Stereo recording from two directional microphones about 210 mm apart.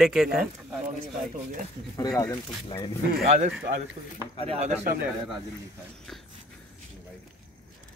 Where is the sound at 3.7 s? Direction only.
35° right (ahead or behind).